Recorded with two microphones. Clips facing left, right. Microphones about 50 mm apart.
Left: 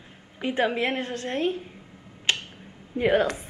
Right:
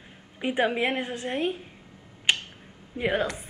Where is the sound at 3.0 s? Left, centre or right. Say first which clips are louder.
Left 5 dB; centre.